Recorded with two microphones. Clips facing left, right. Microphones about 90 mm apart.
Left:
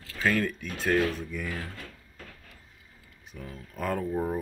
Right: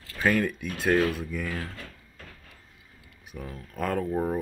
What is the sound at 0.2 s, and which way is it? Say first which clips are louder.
Speech: right 2 dB; 10° right (ahead or behind).